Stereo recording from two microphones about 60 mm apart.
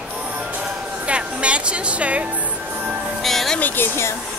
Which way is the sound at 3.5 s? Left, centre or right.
Left.